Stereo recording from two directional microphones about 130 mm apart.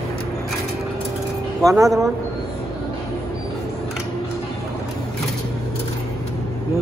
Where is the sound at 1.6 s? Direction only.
25° right (ahead or behind).